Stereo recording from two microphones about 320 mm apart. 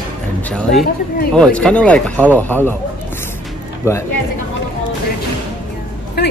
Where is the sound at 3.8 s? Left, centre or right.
Centre.